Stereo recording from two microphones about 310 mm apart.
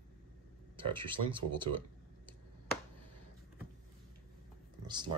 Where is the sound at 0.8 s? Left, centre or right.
Centre.